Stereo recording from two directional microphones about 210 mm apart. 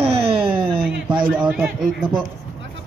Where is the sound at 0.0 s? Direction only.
25° right (ahead or behind).